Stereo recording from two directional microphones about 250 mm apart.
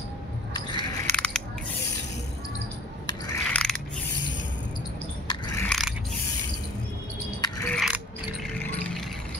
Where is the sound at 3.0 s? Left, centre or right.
Centre.